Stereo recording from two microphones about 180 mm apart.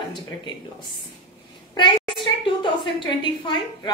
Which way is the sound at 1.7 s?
25° left (ahead or behind).